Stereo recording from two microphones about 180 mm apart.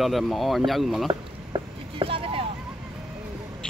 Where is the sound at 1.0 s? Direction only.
30° right (ahead or behind).